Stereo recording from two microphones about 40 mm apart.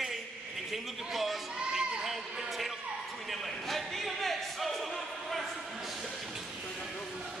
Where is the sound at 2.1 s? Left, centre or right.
Centre.